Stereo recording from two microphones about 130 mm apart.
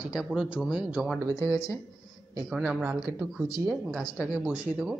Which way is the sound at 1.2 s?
25° right (ahead or behind).